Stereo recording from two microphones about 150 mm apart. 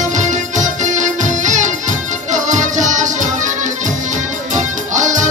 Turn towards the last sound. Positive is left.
turn(degrees=-55)  # may be behind; listen again after turning